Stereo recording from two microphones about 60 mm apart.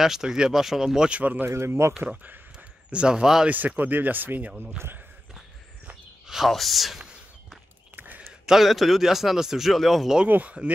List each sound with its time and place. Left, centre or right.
0.0 s speech: centre
1.2 s speech: right
1.5 s speech: right
2.9 s speech: centre
3.4 s speech: right
6.2 s speech: centre
7.9 s a sound: right
8.3 s a man's voice: centre
10.2 s speech: right